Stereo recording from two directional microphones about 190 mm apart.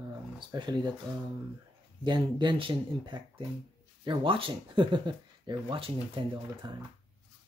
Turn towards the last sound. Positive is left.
turn(degrees=-30)  # may be behind; listen again after turning